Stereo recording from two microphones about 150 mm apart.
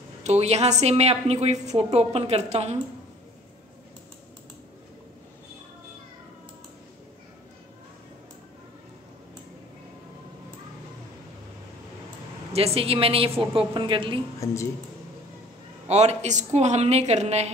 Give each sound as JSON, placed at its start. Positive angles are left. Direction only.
{"t": 0.2, "sound": "a woman's voice", "side_deg": -45}
{"t": 12.5, "sound": "a woman's voice", "side_deg": -40}
{"t": 14.4, "sound": "speech", "side_deg": 20}
{"t": 15.9, "sound": "a woman's voice", "side_deg": -50}